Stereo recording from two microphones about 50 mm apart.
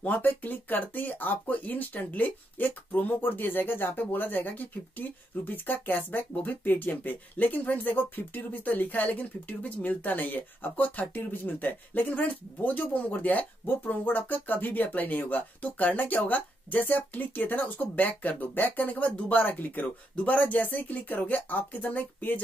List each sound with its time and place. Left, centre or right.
0.0 s speech: left